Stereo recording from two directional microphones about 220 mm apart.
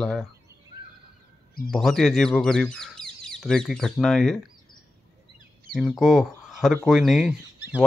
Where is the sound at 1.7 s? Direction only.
Centre (ahead or behind).